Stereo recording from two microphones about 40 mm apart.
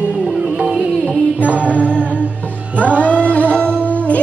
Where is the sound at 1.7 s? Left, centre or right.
Left.